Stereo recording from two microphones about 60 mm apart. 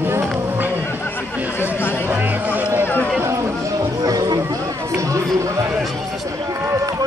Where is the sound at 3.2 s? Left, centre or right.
Right.